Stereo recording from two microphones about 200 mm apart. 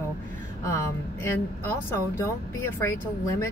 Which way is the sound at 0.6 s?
15° left (ahead or behind).